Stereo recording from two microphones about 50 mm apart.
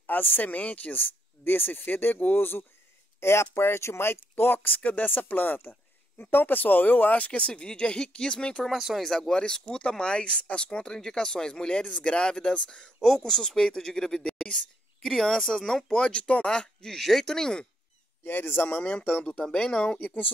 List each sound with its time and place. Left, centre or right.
0.0 s speech: left
3.2 s speech: left; by 8.6 s centre
8.6 s speech: centre
9.0 s speech: centre
13.0 s speech: centre
18.2 s speech: left
18.8 s speech: left
19.3 s speech: centre